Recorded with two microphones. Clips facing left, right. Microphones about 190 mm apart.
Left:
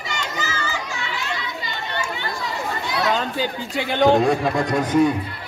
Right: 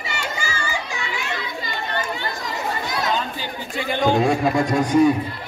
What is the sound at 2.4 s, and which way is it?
Chatter, 45° right (ahead or behind).